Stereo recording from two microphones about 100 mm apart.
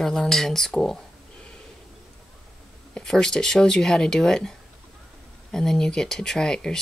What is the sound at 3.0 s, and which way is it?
Speech, 5° left (ahead or behind).